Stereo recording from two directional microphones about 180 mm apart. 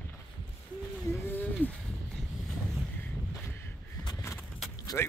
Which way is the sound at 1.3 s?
10° left (ahead or behind).